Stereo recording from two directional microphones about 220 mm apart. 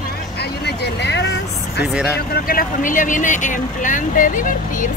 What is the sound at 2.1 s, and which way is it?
Speech, 40° left (ahead or behind).